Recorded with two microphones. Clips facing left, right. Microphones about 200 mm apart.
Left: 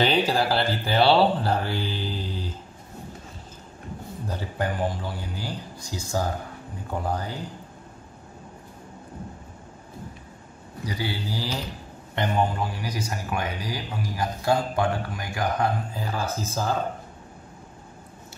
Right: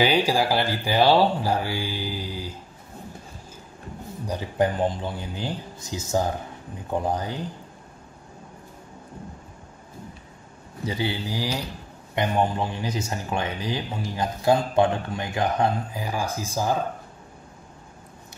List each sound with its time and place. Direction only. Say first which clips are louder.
0.0 s speech: right 1 dB; 10° right (ahead or behind)
4.3 s speech: right 5 dB; 20° right (ahead or behind)
10.9 s speech: right 3 dB; 20° right (ahead or behind)